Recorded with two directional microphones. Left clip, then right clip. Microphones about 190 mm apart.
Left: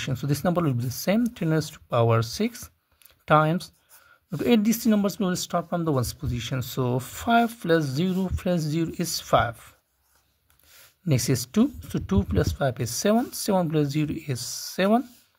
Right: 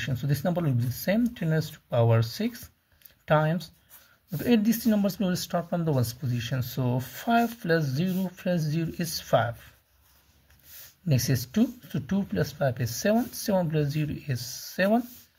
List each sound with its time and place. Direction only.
0.0 s speech: 45° left (ahead or behind)
11.1 s speech: 40° left (ahead or behind)